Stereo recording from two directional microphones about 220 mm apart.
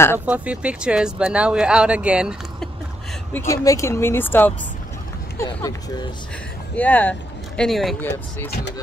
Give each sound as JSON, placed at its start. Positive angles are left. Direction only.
{"t": 0.2, "sound": "speech", "side_deg": -5}
{"t": 3.3, "sound": "speech", "side_deg": 15}